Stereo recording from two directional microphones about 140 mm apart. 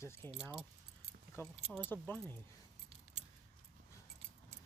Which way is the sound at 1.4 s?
20° left (ahead or behind).